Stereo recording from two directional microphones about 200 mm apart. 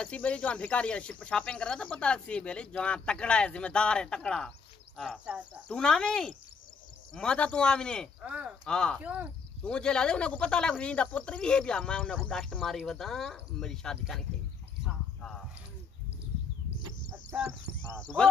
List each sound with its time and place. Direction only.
0.0 s speech: 5° left (ahead or behind)
8.3 s speech: 5° right (ahead or behind)
8.6 s speech: 5° left (ahead or behind)
9.0 s speech: 5° right (ahead or behind)
9.6 s speech: 5° left (ahead or behind)
14.9 s horse: 5° left (ahead or behind)
17.5 s speech: 5° left (ahead or behind)